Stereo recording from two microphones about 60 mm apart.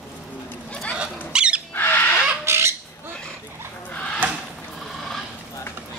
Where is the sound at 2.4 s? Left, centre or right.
Right.